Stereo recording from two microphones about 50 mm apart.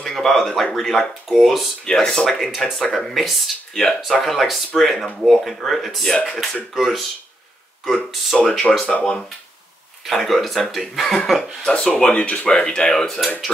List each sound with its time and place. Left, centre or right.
0.1 s speech: centre
1.4 s speech: centre
1.9 s speech: centre
8.4 s speech: centre
10.0 s speech: centre
11.6 s speech: centre
12.2 s speech: left
12.4 s speech: centre